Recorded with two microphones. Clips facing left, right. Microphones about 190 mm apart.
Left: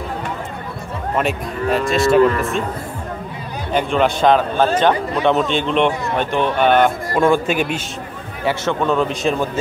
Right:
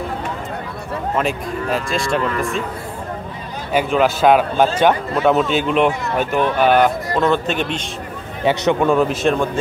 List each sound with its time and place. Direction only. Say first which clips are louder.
1.1 s speech: left 1 dB; centre (ahead or behind)
3.7 s a man's voice: right 1 dB; 5° right (ahead or behind)
7.2 s speech: left 3 dB; 10° left (ahead or behind)
8.5 s a man's voice: right 3 dB; 15° right (ahead or behind)